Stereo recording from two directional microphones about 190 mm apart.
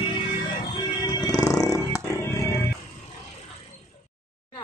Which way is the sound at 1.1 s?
20° left (ahead or behind).